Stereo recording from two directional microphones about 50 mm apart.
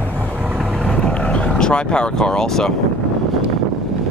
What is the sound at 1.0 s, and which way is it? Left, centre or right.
Vehicle, centre.